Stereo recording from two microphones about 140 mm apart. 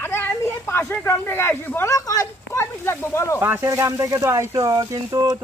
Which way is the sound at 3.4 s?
15° right (ahead or behind).